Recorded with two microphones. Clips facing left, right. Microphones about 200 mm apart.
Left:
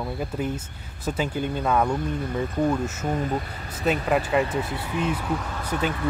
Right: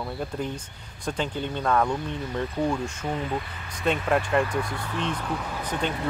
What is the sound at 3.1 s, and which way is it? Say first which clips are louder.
Speech: left 3 dB; 45° left (ahead or behind).